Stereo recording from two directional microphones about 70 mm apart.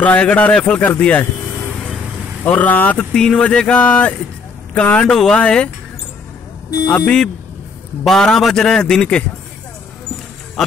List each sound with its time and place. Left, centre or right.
0.0 s speech: centre
2.4 s speech: left
3.1 s a man's voice: centre
8.0 s a man's voice: centre